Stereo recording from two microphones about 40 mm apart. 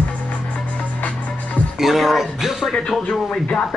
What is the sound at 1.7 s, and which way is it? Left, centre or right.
Speech, centre.